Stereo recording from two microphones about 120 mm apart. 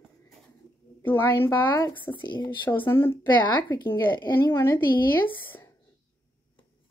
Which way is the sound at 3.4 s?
40° left (ahead or behind).